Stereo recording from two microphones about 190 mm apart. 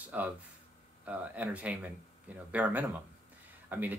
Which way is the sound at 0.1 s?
5° right (ahead or behind).